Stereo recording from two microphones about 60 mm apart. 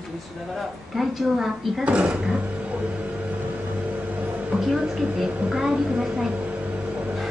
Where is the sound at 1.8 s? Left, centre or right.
Right.